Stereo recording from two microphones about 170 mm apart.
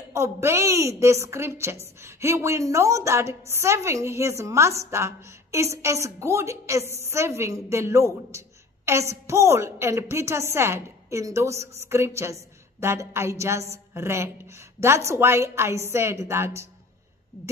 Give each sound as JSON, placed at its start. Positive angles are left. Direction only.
{"t": 0.1, "sound": "a woman's voice", "side_deg": -15}